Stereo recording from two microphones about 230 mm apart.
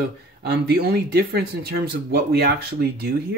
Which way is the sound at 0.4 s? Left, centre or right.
Right.